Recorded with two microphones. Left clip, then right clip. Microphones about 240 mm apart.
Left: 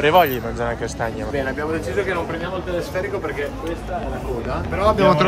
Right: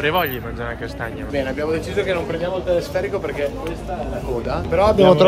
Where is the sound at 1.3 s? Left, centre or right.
Centre.